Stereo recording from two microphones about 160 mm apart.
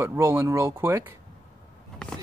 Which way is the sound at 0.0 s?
15° right (ahead or behind).